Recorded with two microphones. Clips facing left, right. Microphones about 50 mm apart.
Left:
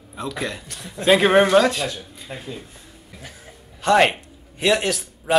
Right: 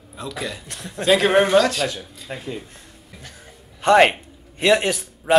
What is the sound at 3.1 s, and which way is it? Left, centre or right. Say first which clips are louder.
Music: left 2 dB; centre.